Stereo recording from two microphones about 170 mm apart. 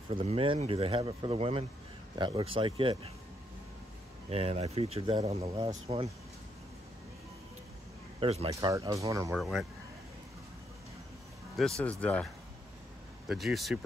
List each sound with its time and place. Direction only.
0.1 s speech: 35° right (ahead or behind)
4.3 s speech: 35° right (ahead or behind)
8.2 s speech: 35° right (ahead or behind)
8.5 s speech: 20° right (ahead or behind)
9.3 s speech: centre (ahead or behind)
11.5 s speech: 5° left (ahead or behind)
13.3 s speech: centre (ahead or behind)